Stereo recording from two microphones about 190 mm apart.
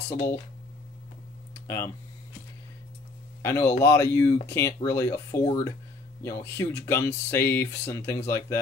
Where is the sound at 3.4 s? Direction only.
15° left (ahead or behind).